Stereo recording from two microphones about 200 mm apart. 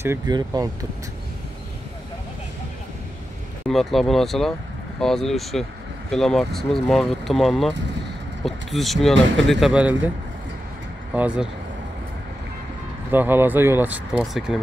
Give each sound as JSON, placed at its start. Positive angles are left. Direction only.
{"t": 0.0, "sound": "speech", "side_deg": -15}
{"t": 3.6, "sound": "speech", "side_deg": 0}
{"t": 11.1, "sound": "speech", "side_deg": -5}
{"t": 13.1, "sound": "speech", "side_deg": -10}